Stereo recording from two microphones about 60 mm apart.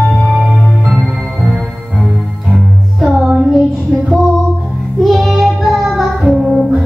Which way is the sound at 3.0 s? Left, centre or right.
Centre.